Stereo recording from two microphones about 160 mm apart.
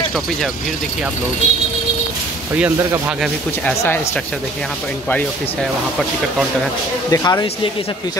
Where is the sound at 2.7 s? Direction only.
20° right (ahead or behind).